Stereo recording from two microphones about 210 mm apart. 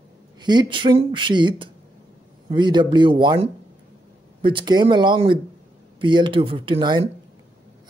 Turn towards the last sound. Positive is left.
turn(degrees=-20)  # may be behind; listen again after turning